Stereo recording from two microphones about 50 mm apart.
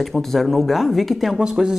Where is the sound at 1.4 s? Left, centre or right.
Centre.